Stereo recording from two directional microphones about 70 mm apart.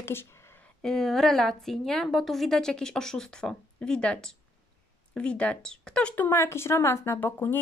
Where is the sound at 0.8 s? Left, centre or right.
Centre.